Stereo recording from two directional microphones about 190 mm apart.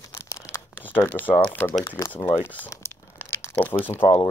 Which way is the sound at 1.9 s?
20° left (ahead or behind).